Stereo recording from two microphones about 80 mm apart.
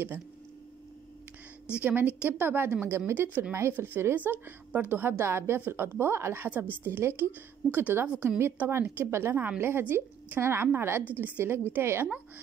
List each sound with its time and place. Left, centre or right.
1.8 s a woman's voice: right